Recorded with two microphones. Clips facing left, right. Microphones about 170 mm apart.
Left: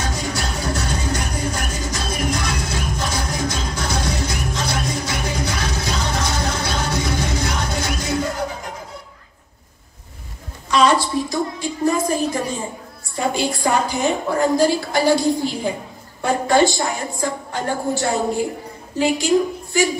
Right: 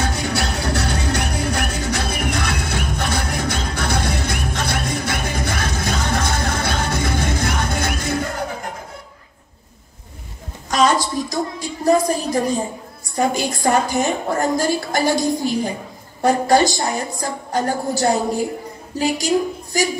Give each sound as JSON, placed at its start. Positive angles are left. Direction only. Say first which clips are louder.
{"t": 0.0, "sound": "music", "louder": "right 3 dB", "side_deg": -60}
{"t": 10.7, "sound": "a sound", "louder": "left 1 dB", "side_deg": -45}
{"t": 13.1, "sound": "a woman's voice", "louder": "right 1 dB", "side_deg": -45}